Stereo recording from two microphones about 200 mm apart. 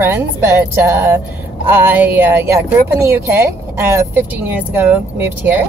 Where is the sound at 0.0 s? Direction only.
10° right (ahead or behind).